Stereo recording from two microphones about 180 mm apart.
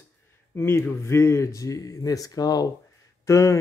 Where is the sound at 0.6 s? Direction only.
15° left (ahead or behind).